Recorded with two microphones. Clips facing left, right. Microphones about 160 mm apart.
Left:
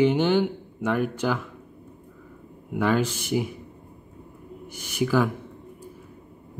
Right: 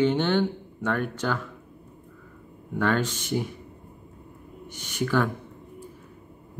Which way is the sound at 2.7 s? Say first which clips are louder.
Left 2 dB; 10° left (ahead or behind).